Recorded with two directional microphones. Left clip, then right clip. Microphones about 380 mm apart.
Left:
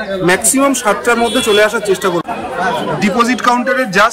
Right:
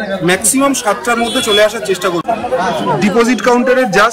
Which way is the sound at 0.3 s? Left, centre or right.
Centre.